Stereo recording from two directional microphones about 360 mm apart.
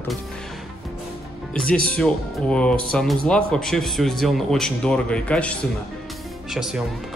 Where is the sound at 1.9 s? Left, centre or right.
Centre.